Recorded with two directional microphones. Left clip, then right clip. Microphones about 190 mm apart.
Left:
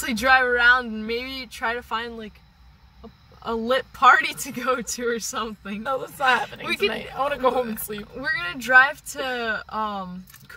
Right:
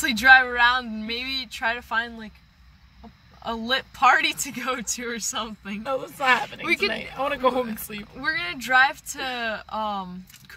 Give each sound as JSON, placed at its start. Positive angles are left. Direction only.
{"t": 0.2, "sound": "speech", "side_deg": -5}
{"t": 3.4, "sound": "speech", "side_deg": -5}
{"t": 5.9, "sound": "speech", "side_deg": 30}
{"t": 6.6, "sound": "speech", "side_deg": -10}
{"t": 6.9, "sound": "speech", "side_deg": 30}
{"t": 8.2, "sound": "speech", "side_deg": -10}